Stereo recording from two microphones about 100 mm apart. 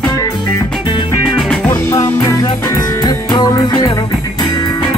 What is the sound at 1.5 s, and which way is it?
Music, 15° left (ahead or behind).